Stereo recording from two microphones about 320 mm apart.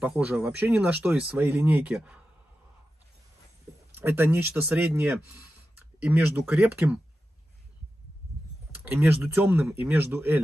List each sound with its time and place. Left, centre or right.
0.0 s speech: centre
3.9 s speech: centre
8.7 s speech: centre